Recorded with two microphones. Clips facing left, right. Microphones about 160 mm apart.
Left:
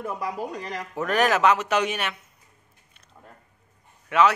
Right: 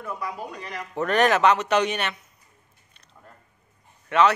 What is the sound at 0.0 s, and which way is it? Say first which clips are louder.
Speech: left 3 dB; 40° left (ahead or behind).